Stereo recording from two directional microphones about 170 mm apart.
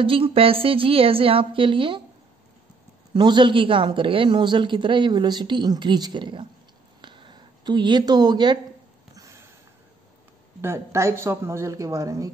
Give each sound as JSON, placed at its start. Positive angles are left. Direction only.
{"t": 0.0, "sound": "a woman's voice", "side_deg": -30}
{"t": 3.1, "sound": "a woman's voice", "side_deg": -25}
{"t": 7.0, "sound": "a sound", "side_deg": -30}
{"t": 10.6, "sound": "a woman's voice", "side_deg": -15}